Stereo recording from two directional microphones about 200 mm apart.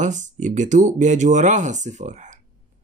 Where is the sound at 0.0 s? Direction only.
40° right (ahead or behind).